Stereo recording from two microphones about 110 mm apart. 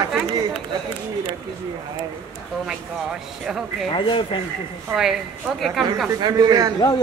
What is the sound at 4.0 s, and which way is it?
Speech, 50° left (ahead or behind).